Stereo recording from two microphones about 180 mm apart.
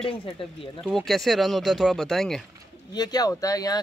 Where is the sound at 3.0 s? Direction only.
20° left (ahead or behind).